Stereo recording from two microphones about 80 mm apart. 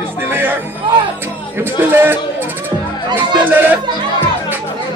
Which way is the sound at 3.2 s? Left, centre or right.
Right.